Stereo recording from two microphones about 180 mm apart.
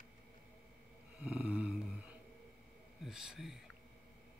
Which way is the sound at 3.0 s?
5° right (ahead or behind).